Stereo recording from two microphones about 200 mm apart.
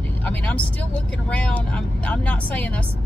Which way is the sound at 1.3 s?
5° left (ahead or behind).